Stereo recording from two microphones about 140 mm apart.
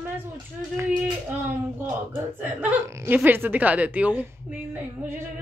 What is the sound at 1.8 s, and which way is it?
Speech, 10° right (ahead or behind).